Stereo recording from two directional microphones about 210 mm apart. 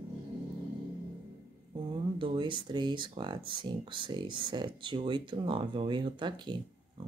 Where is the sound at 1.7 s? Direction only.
20° right (ahead or behind).